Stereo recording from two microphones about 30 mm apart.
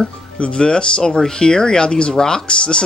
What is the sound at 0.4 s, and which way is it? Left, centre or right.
Speech, left.